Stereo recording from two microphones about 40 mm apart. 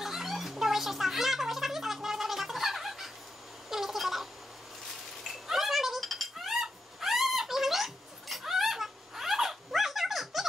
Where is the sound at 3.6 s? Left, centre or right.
Centre.